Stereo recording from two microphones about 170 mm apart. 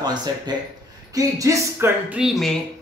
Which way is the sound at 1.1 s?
20° right (ahead or behind).